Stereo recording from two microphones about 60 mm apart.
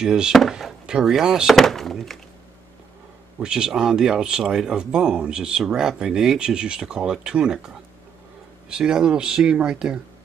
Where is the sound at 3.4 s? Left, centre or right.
Centre.